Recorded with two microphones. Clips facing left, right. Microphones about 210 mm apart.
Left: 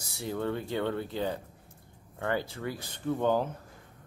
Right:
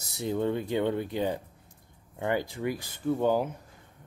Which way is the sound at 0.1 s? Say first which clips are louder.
Right 4 dB; 20° right (ahead or behind).